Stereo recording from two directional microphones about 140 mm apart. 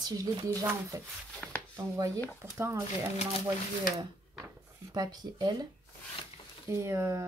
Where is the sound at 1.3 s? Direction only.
5° left (ahead or behind).